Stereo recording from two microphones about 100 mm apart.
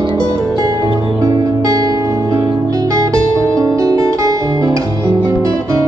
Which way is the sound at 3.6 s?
35° right (ahead or behind).